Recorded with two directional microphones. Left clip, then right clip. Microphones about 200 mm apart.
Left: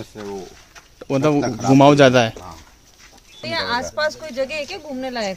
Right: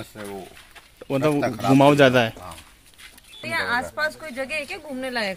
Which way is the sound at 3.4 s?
45° left (ahead or behind).